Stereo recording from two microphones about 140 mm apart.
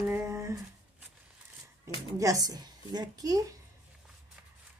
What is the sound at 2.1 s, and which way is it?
A woman's voice, 25° right (ahead or behind).